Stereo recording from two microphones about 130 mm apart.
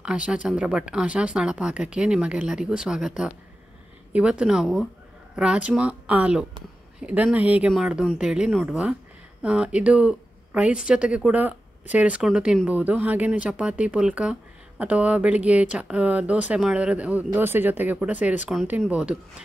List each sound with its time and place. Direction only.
0.0 s speech: 10° right (ahead or behind)